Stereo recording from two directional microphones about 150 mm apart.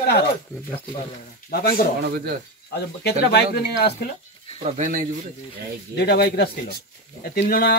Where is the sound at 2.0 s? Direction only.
90° right.